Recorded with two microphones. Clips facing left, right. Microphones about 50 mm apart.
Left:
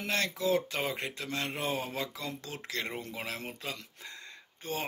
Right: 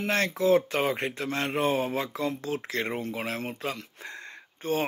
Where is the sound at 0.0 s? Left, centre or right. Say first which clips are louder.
Right 6 dB; right.